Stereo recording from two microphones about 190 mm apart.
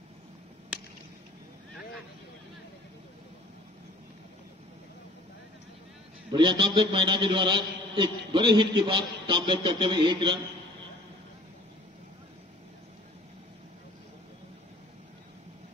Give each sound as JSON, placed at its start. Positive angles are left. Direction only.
{"t": 6.3, "sound": "a man's voice", "side_deg": -25}